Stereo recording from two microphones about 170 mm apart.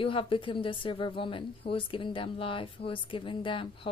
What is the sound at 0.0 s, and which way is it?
A woman's voice, 30° left (ahead or behind).